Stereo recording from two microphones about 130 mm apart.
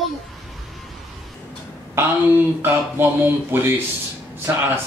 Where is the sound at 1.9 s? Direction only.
15° right (ahead or behind).